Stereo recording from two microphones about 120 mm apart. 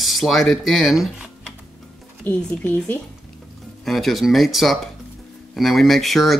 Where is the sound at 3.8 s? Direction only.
Centre (ahead or behind).